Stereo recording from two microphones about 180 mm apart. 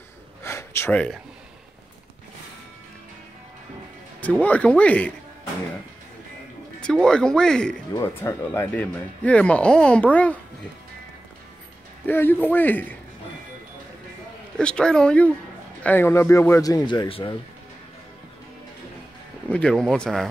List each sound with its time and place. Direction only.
0.4 s a sound: 15° left (ahead or behind)
4.2 s speech: 10° left (ahead or behind)
6.8 s speech: 5° left (ahead or behind)
12.1 s speech: 10° left (ahead or behind)
14.6 s speech: 5° left (ahead or behind); by 17.4 s 25° left (ahead or behind)
19.5 s speech: 5° left (ahead or behind)